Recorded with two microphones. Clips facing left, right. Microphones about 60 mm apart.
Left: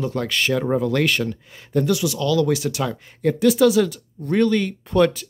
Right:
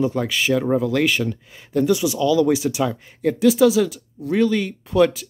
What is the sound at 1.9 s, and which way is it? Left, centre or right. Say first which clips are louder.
Speech: right 4 dB; centre.